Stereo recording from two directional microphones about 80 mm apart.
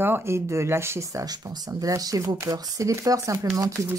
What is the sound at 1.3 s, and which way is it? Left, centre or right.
Speech, right.